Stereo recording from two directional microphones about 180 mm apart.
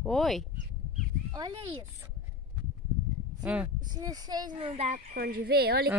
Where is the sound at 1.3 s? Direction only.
25° right (ahead or behind).